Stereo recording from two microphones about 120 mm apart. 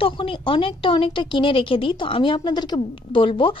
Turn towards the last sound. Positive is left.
turn(degrees=45)  # may be behind; listen again after turning